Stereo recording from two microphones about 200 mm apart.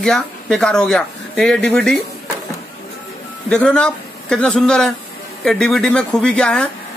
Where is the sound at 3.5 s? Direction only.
5° left (ahead or behind).